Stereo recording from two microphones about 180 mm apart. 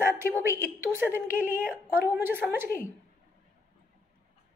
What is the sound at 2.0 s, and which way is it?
Speech, 10° right (ahead or behind).